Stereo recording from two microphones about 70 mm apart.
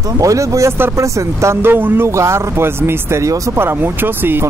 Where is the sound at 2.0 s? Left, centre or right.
Right.